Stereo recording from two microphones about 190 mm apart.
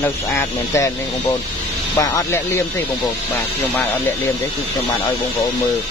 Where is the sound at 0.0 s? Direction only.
15° left (ahead or behind).